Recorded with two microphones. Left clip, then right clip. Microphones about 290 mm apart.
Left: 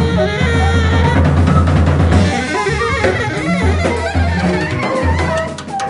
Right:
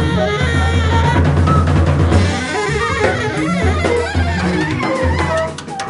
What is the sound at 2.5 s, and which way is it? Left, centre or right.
Music, centre.